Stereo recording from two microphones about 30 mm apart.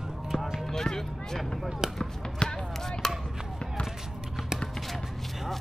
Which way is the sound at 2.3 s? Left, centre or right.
Left.